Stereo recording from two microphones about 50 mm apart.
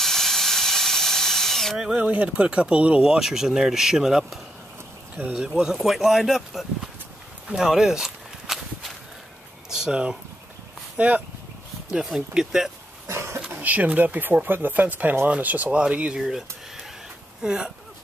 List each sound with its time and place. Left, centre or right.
0.0 s steam: centre
2.0 s speech: right
3.0 s speech: centre
7.4 s walk: centre
9.7 s speech: centre
11.0 s speech: right
11.9 s speech: centre
13.0 s cough: right
13.5 s speech: right
15.7 s speech: right
16.2 s a sound: centre
17.4 s speech: centre